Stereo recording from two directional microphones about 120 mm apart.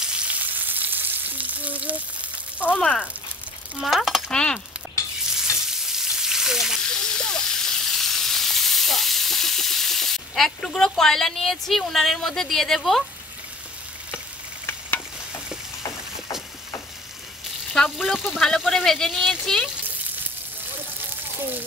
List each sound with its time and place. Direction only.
0.0 s frying: 10° right (ahead or behind)
2.6 s speech: 10° left (ahead or behind)
3.8 s speech: centre (ahead or behind)
5.7 s frying: 5° right (ahead or behind)
17.7 s speech: centre (ahead or behind)